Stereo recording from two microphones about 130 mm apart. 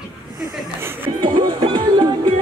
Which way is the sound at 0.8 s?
15° right (ahead or behind).